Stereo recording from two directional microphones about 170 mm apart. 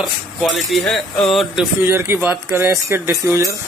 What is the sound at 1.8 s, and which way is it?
Speech, 15° right (ahead or behind).